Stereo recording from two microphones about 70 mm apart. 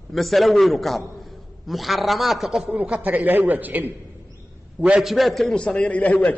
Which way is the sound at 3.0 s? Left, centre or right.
Right.